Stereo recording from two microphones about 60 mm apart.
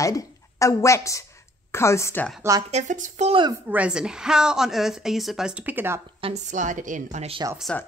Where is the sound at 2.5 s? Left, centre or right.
Right.